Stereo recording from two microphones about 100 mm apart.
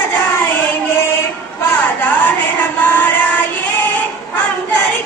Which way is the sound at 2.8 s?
20° left (ahead or behind).